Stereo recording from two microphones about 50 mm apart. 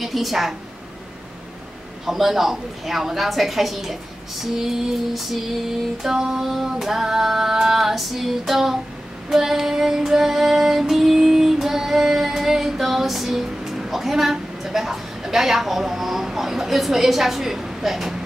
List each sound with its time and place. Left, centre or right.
0.0 s a woman's voice: centre
2.0 s a woman's voice: centre
9.3 s female singing: centre